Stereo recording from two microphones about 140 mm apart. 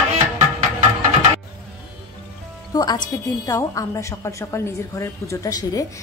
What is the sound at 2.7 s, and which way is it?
A woman's voice, 30° left (ahead or behind).